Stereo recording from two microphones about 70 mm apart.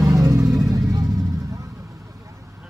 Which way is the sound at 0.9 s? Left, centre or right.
Right.